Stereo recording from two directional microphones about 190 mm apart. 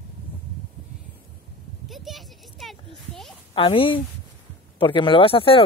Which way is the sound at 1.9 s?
Centre (ahead or behind).